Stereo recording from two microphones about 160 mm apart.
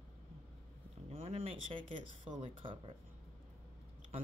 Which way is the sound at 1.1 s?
35° right (ahead or behind).